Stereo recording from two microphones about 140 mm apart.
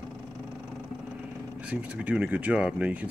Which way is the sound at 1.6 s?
10° right (ahead or behind).